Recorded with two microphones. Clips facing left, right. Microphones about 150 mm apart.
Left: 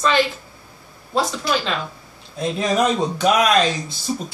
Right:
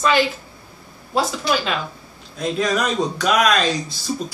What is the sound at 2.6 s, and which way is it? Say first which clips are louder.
Speech: left 2 dB; 25° left (ahead or behind).